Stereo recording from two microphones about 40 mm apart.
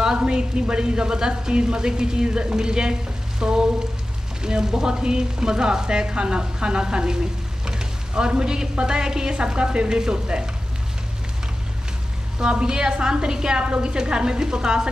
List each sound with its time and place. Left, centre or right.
0.2 s a woman's voice: right
12.4 s a woman's voice: right